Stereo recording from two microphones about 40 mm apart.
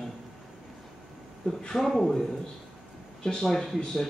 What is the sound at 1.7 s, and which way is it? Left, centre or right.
Speech, centre.